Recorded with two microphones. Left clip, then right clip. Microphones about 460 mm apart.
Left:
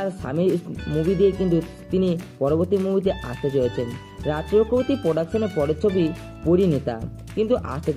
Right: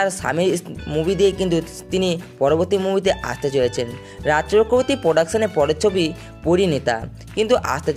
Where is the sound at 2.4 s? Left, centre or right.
Right.